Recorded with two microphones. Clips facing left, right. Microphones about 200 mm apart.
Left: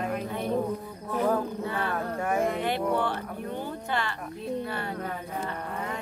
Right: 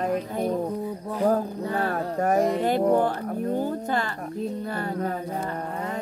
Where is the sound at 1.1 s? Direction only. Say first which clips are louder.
Right 2 dB; 35° right (ahead or behind).